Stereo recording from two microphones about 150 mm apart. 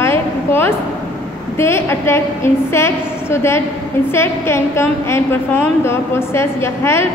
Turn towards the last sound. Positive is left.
turn(degrees=15)  # may be behind; listen again after turning